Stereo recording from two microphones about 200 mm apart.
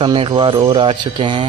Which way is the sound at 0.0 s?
25° right (ahead or behind).